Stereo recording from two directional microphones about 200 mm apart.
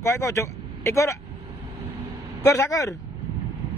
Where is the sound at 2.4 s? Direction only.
15° left (ahead or behind).